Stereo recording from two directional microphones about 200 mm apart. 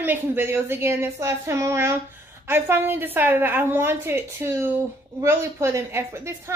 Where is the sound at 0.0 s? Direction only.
10° right (ahead or behind).